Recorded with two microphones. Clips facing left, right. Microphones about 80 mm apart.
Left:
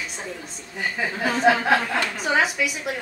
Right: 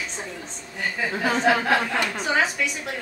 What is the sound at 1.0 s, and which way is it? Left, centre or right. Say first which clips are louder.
A woman's voice: even; centre.